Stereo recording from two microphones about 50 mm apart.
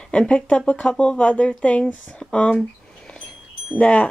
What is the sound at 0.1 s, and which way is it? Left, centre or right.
Speech, left.